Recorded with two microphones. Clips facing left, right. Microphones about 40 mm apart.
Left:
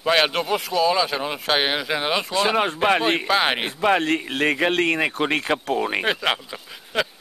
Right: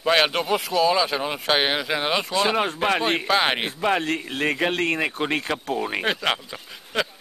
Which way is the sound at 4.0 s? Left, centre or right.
Left.